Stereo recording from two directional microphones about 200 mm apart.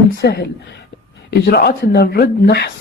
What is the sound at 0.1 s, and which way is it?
Speech, 55° left (ahead or behind).